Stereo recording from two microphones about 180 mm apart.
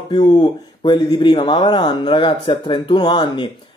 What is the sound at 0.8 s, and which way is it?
Speech, 25° left (ahead or behind).